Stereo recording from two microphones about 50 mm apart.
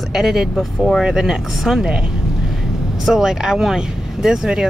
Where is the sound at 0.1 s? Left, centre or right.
Centre.